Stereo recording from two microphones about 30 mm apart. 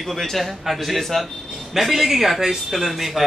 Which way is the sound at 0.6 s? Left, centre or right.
Centre.